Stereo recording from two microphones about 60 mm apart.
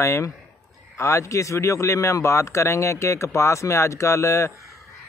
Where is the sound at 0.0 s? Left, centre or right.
Left.